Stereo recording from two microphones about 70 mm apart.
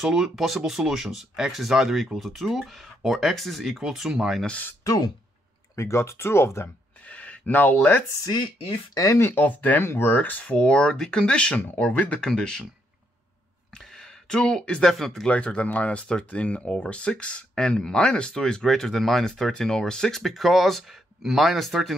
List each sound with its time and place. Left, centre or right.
0.0 s speech: centre
4.8 s speech: left
5.8 s speech: left
7.1 s speech: left
8.9 s speech: left
9.2 s speech: left
10.4 s speech: centre
13.7 s speech: centre
15.2 s speech: centre